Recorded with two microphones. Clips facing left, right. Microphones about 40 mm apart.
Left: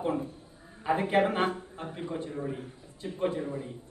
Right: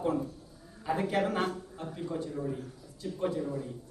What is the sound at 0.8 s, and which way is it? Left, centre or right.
A man's voice, left.